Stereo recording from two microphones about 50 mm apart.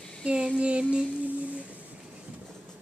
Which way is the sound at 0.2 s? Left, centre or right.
Centre.